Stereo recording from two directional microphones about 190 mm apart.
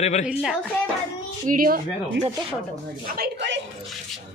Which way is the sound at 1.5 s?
50° right (ahead or behind).